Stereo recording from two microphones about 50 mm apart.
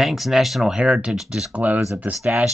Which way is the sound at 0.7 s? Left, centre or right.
Centre.